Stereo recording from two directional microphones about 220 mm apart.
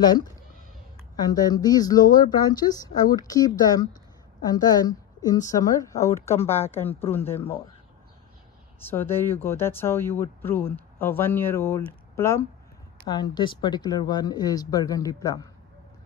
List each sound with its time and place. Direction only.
1.1 s speech: 20° left (ahead or behind)
8.9 s speech: 10° left (ahead or behind)